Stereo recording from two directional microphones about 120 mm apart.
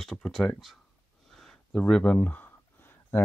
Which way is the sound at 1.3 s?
5° left (ahead or behind).